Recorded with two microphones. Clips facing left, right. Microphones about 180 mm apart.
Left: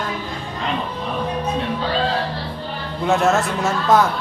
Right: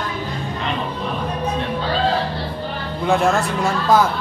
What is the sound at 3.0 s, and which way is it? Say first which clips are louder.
A man's voice: even; centre (ahead or behind).